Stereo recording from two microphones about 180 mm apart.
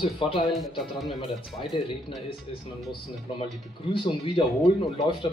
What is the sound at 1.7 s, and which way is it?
Speech, 30° left (ahead or behind).